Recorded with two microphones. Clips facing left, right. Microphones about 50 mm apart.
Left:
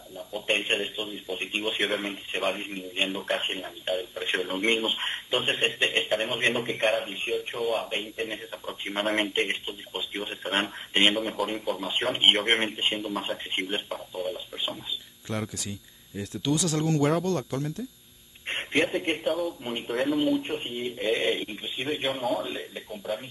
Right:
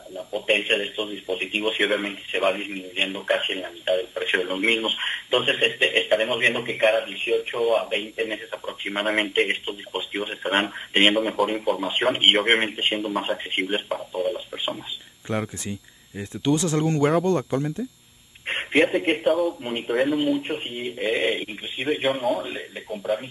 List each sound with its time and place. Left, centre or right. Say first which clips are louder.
0.1 s speech: right 5 dB; centre; by 17.8 s right
18.5 s speech: right 6 dB; centre